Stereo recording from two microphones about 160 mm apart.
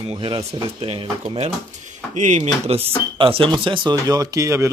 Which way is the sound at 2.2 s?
50° right (ahead or behind).